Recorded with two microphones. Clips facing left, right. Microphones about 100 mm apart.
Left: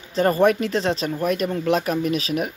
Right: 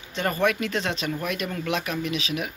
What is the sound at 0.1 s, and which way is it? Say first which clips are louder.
Speech: left 7 dB; 35° left (ahead or behind).